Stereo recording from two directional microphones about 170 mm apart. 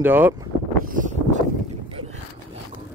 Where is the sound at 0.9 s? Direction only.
50° right (ahead or behind).